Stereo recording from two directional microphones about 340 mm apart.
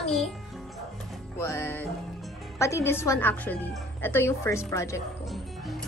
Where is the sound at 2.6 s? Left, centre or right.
Centre.